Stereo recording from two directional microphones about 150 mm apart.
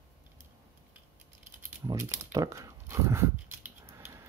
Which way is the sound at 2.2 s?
20° right (ahead or behind).